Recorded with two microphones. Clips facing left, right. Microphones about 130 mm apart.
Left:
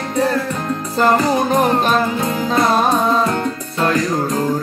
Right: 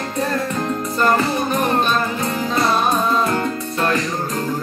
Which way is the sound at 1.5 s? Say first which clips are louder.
Left 3 dB; 90° left.